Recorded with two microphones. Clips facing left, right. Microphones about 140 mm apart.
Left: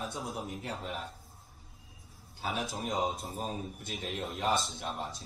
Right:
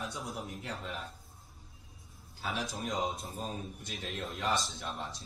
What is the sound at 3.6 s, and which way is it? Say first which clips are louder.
Speech: left 3 dB; 5° left (ahead or behind).